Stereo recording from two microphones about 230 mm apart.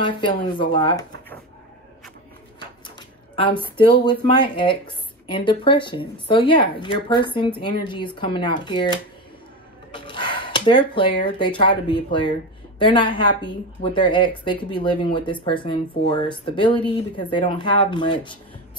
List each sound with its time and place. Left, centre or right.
0.0 s speech: left
3.0 s speech: left
9.9 s a sound: left
11.0 s speech: left